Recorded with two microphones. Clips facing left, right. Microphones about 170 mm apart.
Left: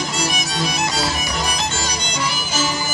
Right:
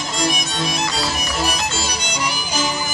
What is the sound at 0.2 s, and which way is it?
Music, centre (ahead or behind).